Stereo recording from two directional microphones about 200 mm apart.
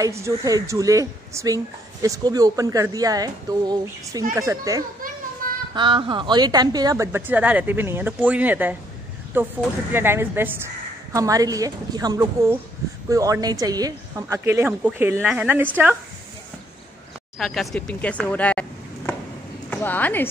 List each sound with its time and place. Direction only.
0.0 s speech: 15° right (ahead or behind)
5.4 s child singing: 45° right (ahead or behind)
5.8 s speech: 25° right (ahead or behind)
17.4 s speech: centre (ahead or behind)